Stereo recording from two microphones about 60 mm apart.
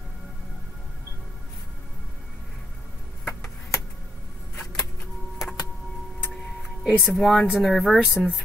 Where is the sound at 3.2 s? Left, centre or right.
Left.